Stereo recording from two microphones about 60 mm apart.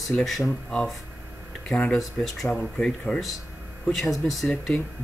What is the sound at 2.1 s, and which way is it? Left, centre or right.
Speech, centre.